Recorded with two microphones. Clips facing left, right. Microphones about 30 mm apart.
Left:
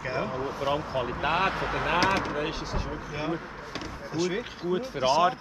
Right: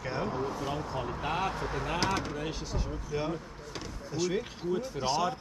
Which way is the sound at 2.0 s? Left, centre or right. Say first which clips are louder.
Left 6 dB; left.